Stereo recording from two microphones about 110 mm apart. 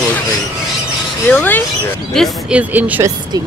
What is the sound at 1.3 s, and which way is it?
Speech, 15° left (ahead or behind).